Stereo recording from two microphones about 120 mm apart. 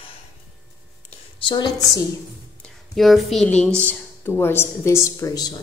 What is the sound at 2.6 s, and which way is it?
Speech, centre (ahead or behind).